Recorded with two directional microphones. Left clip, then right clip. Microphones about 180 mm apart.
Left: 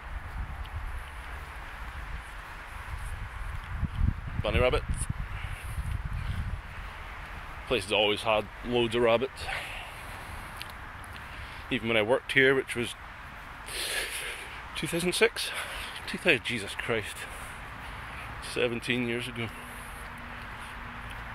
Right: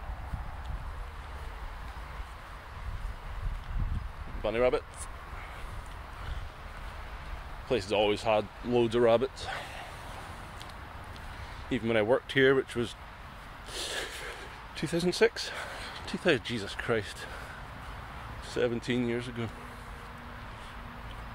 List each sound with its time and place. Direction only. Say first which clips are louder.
4.4 s speech: even; 5° right (ahead or behind)
7.6 s speech: left 1 dB; 15° right (ahead or behind)
11.7 s speech: left 1 dB; 15° right (ahead or behind)
13.7 s a sound: left 3 dB; 15° right (ahead or behind)
14.8 s speech: left 1 dB; 20° right (ahead or behind)
16.1 s speech: left 2 dB; 25° right (ahead or behind)
18.5 s speech: left 1 dB; 15° right (ahead or behind)